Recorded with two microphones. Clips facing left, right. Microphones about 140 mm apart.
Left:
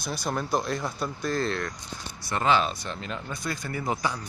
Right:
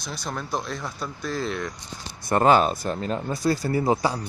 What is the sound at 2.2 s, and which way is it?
Speech, 50° right (ahead or behind).